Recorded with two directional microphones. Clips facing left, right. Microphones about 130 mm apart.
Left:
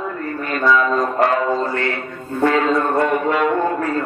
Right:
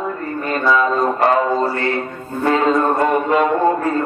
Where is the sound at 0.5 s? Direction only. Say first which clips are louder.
Even; 35° right (ahead or behind).